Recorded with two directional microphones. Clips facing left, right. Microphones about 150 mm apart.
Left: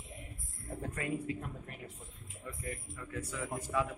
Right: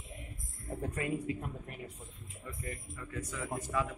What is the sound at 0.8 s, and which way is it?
Speech, 20° right (ahead or behind).